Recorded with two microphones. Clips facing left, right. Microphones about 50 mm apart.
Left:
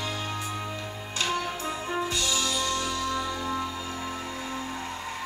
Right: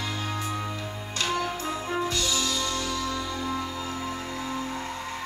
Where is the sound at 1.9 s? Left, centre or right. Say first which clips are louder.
Right 1 dB; centre.